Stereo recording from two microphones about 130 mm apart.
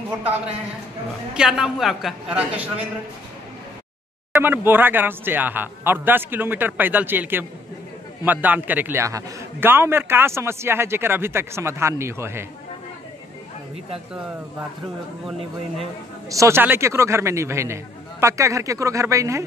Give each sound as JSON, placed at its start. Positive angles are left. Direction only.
{"t": 1.3, "sound": "a man's voice", "side_deg": -5}
{"t": 4.4, "sound": "a man's voice", "side_deg": -15}
{"t": 16.3, "sound": "a man's voice", "side_deg": -25}